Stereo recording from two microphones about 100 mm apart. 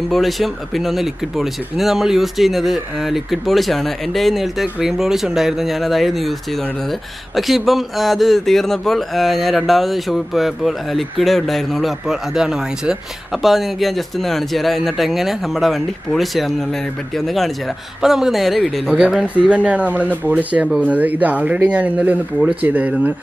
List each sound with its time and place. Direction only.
0.1 s speech: centre (ahead or behind)
7.3 s speech: centre (ahead or behind)
18.0 s speech: 5° right (ahead or behind)